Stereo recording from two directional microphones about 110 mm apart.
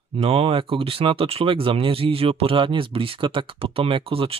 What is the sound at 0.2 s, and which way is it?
Speech, 65° right (ahead or behind).